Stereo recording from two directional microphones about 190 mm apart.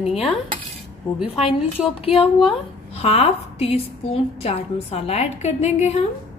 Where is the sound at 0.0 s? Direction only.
30° left (ahead or behind).